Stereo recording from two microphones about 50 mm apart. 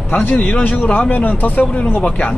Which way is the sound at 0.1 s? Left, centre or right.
Left.